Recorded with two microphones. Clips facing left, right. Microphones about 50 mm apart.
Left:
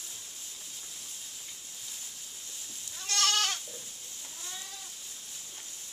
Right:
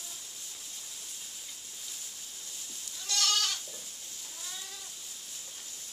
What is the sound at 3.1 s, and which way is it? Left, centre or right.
Goat, left.